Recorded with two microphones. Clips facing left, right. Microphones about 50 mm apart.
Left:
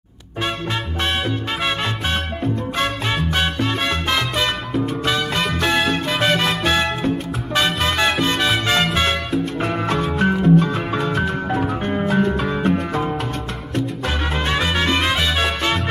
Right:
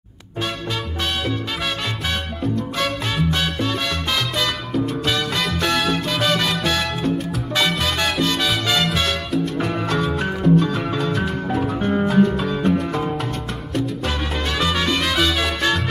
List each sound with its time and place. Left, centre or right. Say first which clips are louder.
3.3 s salsa music: left 2 dB; left
7.5 s music: left 2 dB; left
14.0 s music: left 2 dB; left
15.1 s salsa music: even; left